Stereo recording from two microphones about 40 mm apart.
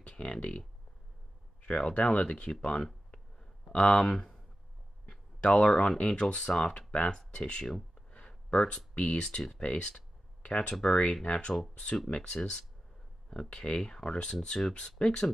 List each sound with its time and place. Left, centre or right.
0.0 s speech: left
1.6 s speech: left
4.1 s speech: centre
5.4 s speech: left
8.1 s a sound: left
9.0 s speech: left
9.5 s a sound: left
10.6 s speech: left